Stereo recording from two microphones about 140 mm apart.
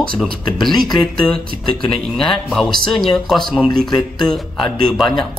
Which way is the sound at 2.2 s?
5° left (ahead or behind).